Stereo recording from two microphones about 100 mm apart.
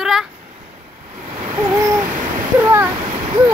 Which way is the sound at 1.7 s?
35° right (ahead or behind).